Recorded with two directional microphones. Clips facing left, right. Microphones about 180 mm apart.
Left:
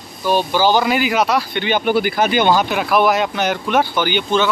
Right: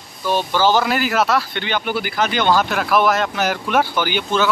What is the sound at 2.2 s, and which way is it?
Speech, 10° left (ahead or behind).